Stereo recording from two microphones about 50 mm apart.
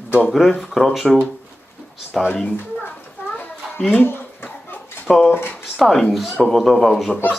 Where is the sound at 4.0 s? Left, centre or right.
Left.